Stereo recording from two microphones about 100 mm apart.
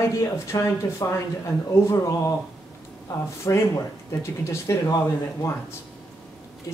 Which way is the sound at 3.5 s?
35° left (ahead or behind).